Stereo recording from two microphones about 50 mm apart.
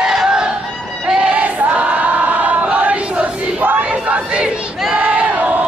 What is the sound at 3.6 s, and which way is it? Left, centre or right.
Battle cry, right.